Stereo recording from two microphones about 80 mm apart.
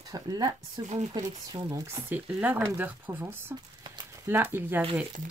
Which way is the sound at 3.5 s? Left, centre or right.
Right.